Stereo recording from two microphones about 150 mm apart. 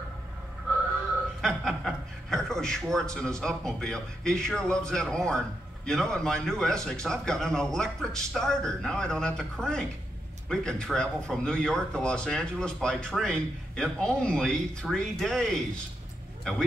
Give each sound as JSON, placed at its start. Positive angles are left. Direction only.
{"t": 1.4, "sound": "a man's voice", "side_deg": 0}